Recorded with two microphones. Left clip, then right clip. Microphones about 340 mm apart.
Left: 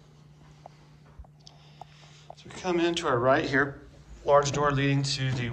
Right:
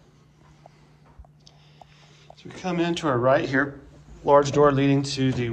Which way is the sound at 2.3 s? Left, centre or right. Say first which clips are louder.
Right 1 dB; centre.